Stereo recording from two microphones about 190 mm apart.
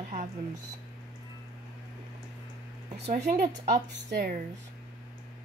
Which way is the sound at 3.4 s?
65° right (ahead or behind).